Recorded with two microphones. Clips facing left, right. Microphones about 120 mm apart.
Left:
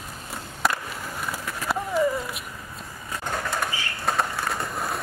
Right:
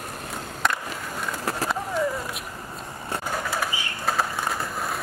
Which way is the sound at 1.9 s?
Centre (ahead or behind).